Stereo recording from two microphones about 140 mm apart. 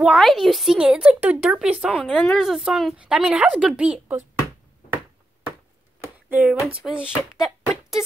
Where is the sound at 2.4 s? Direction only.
Centre (ahead or behind).